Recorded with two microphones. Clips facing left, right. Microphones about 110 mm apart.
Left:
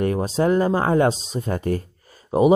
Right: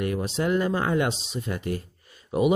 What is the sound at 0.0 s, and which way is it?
Speech, 40° left (ahead or behind).